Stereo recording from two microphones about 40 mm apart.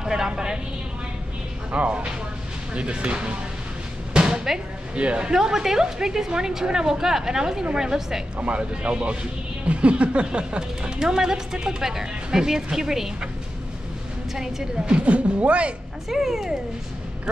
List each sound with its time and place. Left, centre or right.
0.0 s a woman's voice: centre
1.7 s speech: right
4.1 s a sound: right
4.9 s speech: right
5.3 s a woman's voice: centre
8.4 s speech: right
11.0 s a woman's voice: centre
14.3 s a woman's voice: centre
14.9 s speech: right
16.1 s a woman's voice: centre